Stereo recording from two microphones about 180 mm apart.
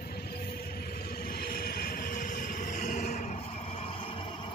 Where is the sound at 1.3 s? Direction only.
60° left (ahead or behind); by 3.4 s 45° left (ahead or behind).